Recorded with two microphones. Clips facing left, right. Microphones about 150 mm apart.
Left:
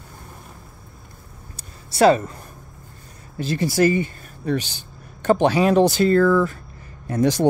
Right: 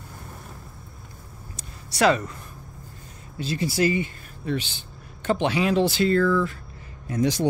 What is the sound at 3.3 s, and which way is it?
Speech, 50° left (ahead or behind).